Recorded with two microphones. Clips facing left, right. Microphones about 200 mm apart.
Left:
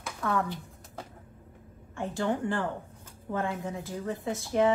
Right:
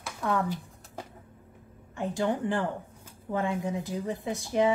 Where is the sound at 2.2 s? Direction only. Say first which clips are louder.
Right 1 dB; 15° right (ahead or behind).